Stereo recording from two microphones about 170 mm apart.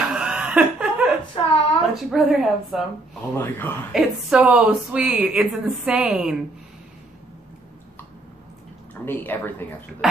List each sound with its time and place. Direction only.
0.1 s laughter: 5° right (ahead or behind)
1.3 s a sound: 35° left (ahead or behind)
2.0 s a woman's voice: centre (ahead or behind)
3.3 s speech: 10° left (ahead or behind)
3.9 s a woman's voice: 5° right (ahead or behind)
9.0 s speech: 10° left (ahead or behind)